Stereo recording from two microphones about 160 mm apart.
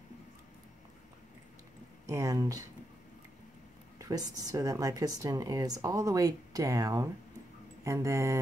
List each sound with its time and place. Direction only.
2.0 s speech: 20° right (ahead or behind)
4.0 s speech: 20° right (ahead or behind)